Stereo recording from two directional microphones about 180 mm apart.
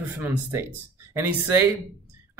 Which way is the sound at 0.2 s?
10° right (ahead or behind).